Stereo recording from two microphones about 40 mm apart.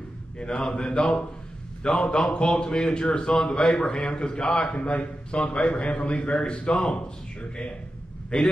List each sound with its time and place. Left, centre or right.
0.4 s a man's voice: left
0.7 s mantra: left
1.8 s a man's voice: centre; by 5.5 s left
5.5 s a man's voice: left
8.3 s a man's voice: left